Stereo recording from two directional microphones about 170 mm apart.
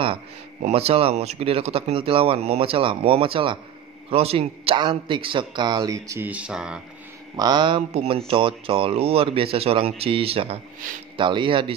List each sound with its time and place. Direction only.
0.6 s a man's voice: 40° right (ahead or behind); by 6.8 s 5° right (ahead or behind)
7.3 s a man's voice: 25° right (ahead or behind)